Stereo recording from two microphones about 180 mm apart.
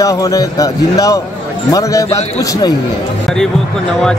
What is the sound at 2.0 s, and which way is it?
Speech, 35° left (ahead or behind).